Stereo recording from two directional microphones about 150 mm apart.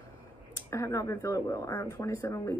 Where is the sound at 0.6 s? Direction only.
20° left (ahead or behind).